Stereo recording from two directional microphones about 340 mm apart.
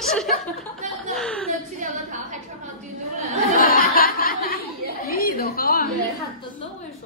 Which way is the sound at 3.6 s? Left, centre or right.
Left.